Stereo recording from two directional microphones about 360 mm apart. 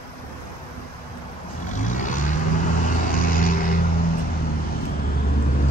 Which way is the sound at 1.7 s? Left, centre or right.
Left.